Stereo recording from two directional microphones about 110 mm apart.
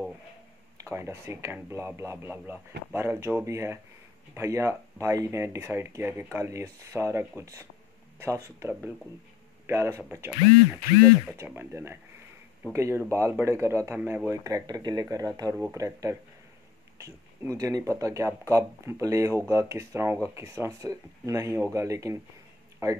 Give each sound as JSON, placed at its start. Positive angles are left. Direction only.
{"t": 0.8, "sound": "speech", "side_deg": -25}
{"t": 14.3, "sound": "speech", "side_deg": -30}